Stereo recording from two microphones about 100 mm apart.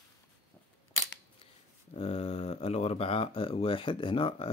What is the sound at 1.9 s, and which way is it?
Speech, 90° left.